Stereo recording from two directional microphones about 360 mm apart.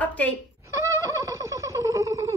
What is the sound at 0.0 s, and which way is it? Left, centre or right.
Cat, centre.